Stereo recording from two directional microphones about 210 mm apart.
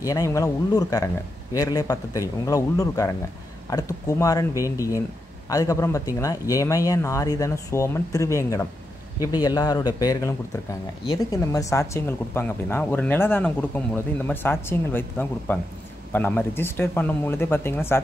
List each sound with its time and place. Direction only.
0.0 s speech: 15° left (ahead or behind)